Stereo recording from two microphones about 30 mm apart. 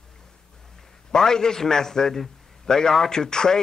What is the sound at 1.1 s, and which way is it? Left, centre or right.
A man's voice, left.